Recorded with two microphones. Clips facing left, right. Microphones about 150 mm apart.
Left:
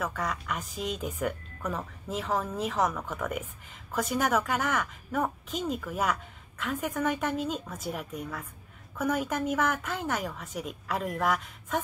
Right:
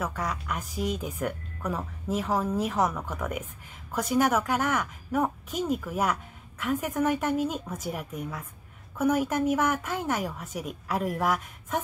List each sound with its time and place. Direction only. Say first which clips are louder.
0.0 s a woman's voice: right 1 dB; 5° right (ahead or behind)